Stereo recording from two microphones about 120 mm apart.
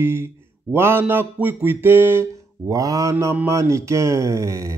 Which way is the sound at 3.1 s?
15° right (ahead or behind).